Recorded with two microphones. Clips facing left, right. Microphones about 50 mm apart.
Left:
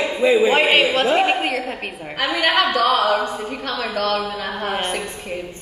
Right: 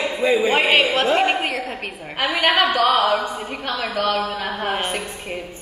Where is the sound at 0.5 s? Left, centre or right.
Centre.